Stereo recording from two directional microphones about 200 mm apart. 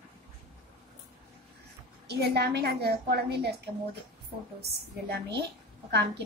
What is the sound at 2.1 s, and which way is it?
A woman's voice, 55° right (ahead or behind).